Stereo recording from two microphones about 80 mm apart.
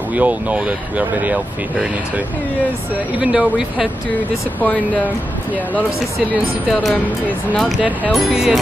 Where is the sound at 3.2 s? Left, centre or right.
Centre.